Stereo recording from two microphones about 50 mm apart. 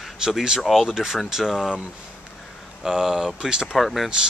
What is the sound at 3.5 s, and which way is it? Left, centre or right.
Speech, centre.